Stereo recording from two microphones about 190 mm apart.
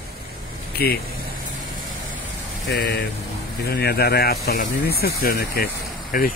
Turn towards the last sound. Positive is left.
turn(degrees=50)  # may be behind; listen again after turning